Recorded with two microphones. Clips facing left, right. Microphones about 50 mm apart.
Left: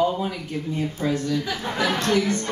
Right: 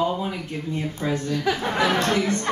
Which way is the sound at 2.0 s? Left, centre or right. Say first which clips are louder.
Left 1 dB; right.